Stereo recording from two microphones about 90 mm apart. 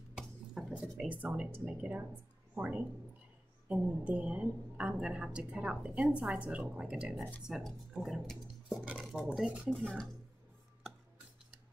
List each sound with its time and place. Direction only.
0.6 s a woman's voice: 5° right (ahead or behind)